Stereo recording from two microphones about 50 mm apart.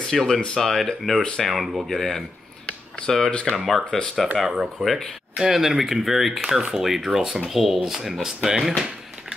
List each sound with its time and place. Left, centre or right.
0.0 s speech: centre
1.2 s speech: centre
1.5 s speech: centre
1.9 s speech: centre
3.5 s speech: centre
4.5 s speech: centre